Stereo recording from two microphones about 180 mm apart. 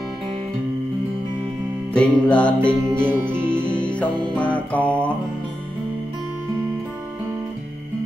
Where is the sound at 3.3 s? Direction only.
5° left (ahead or behind).